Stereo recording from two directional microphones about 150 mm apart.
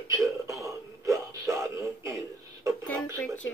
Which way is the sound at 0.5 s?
20° right (ahead or behind).